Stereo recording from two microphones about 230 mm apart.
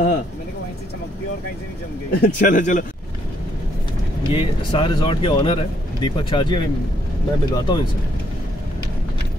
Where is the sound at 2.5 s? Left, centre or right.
Left.